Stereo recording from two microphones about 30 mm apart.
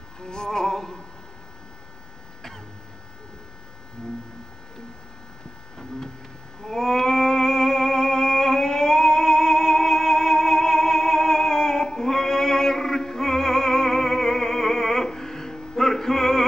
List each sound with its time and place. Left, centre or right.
0.2 s music: left
6.6 s music: centre